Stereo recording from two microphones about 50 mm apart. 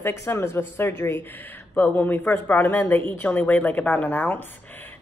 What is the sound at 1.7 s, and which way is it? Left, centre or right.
Speech, left.